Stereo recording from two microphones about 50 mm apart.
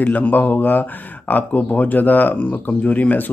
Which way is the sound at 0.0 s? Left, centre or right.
Left.